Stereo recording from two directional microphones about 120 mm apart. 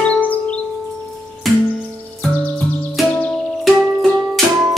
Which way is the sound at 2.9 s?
Centre (ahead or behind).